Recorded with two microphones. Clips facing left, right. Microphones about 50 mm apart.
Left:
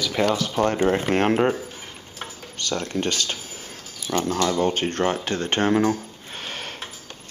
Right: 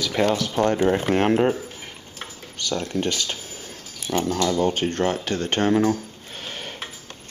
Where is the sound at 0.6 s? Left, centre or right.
Centre.